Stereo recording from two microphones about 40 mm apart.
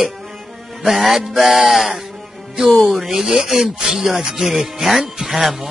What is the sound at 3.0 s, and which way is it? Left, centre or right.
A man's voice, centre.